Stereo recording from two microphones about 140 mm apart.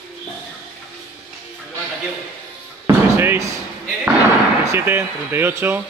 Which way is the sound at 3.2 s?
15° right (ahead or behind).